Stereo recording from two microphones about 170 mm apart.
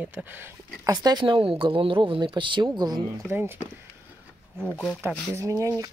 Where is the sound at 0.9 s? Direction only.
25° right (ahead or behind).